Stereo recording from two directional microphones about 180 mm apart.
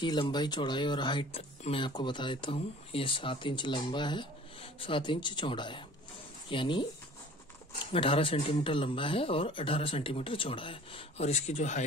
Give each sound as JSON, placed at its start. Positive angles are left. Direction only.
{"t": 0.0, "sound": "speech", "side_deg": 25}